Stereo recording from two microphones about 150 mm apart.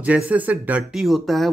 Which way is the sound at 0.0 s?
10° right (ahead or behind).